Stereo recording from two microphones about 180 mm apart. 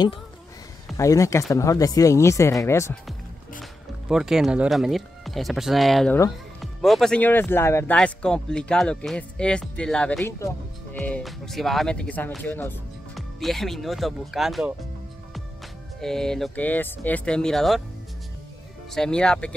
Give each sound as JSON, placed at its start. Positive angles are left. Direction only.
{"t": 0.9, "sound": "speech", "side_deg": 15}
{"t": 4.1, "sound": "speech", "side_deg": 0}
{"t": 16.0, "sound": "speech", "side_deg": 5}
{"t": 18.9, "sound": "speech", "side_deg": 5}